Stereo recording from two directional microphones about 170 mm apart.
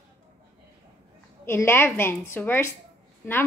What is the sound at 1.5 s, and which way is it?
Speech, 15° left (ahead or behind).